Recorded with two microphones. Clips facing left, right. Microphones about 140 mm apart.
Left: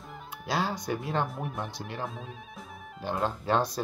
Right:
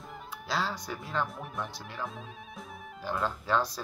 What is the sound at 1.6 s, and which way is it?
Speech, 20° left (ahead or behind).